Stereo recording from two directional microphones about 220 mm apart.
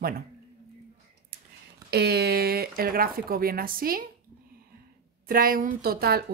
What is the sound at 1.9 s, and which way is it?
Speech, 45° right (ahead or behind).